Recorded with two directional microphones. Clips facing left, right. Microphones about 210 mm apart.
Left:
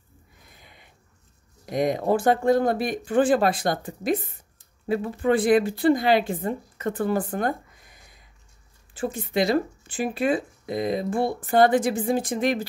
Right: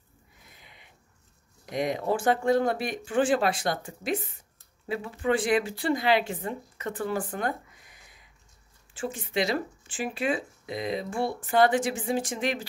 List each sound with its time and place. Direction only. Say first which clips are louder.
0.6 s a sound: left 4 dB; 45° left (ahead or behind)
1.7 s speech: left 5 dB; 45° left (ahead or behind)
4.8 s speech: left 5 dB; 45° left (ahead or behind)
6.9 s speech: left 6 dB; 55° left (ahead or behind)
9.2 s speech: left 6 dB; 45° left (ahead or behind)